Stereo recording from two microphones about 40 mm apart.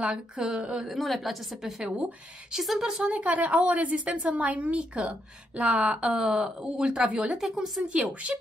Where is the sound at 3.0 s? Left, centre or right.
Right.